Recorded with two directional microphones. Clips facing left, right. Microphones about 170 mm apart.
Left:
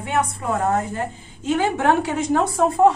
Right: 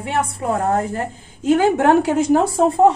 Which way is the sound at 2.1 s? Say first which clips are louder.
Right 4 dB; 30° right (ahead or behind).